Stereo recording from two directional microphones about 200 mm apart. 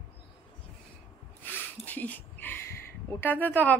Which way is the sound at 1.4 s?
10° left (ahead or behind).